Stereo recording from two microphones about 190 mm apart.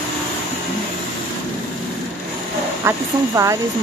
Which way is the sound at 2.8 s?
15° right (ahead or behind).